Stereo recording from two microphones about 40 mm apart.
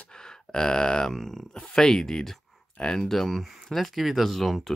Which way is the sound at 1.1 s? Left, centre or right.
Centre.